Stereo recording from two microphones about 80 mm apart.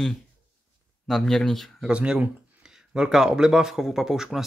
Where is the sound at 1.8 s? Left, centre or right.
Centre.